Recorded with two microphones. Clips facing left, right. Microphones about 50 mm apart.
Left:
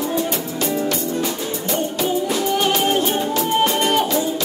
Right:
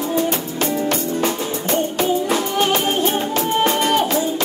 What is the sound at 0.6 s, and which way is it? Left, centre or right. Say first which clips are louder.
Music: right 1 dB; right.